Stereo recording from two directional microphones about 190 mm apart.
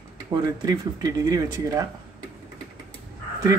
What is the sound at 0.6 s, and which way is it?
Speech, 20° right (ahead or behind).